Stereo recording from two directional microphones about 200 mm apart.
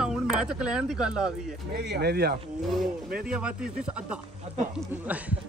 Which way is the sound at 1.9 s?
55° right (ahead or behind).